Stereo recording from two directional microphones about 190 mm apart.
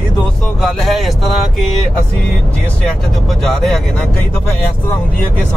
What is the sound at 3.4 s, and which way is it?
Speech, centre (ahead or behind).